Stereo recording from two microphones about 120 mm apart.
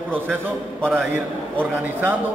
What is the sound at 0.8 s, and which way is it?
Speech, centre (ahead or behind).